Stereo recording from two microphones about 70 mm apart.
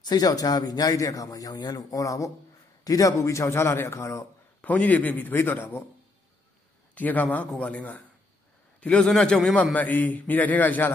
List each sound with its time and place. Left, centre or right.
0.0 s a man's voice: left
4.6 s a man's voice: centre
7.0 s a man's voice: left
9.8 s a man's voice: left